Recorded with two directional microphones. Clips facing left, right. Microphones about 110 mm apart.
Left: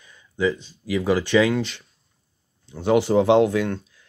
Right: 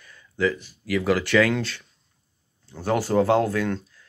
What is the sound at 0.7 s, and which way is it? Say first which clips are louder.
Speech: left 1 dB; 15° left (ahead or behind).